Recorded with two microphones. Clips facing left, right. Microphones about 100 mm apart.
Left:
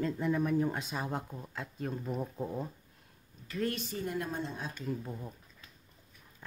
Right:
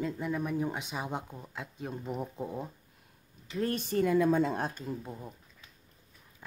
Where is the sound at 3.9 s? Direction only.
70° right (ahead or behind).